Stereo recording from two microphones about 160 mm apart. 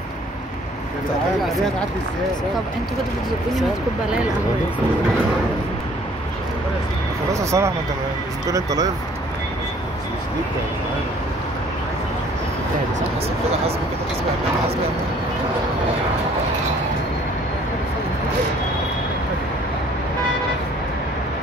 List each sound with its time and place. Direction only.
7.3 s speech: 20° right (ahead or behind)